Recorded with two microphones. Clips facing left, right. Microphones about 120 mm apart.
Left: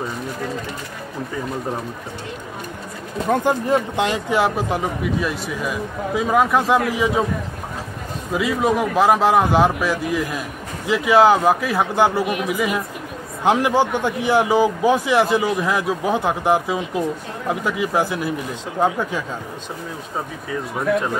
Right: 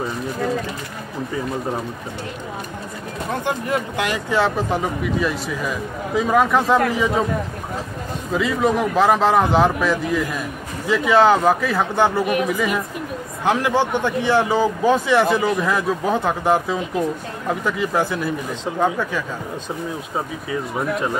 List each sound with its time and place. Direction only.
3.6 s speech: 25° left (ahead or behind)
4.6 s speech: 5° left (ahead or behind)
8.3 s a man's voice: 5° left (ahead or behind)
13.4 s a man's voice: 15° left (ahead or behind)
20.4 s speech: 5° right (ahead or behind)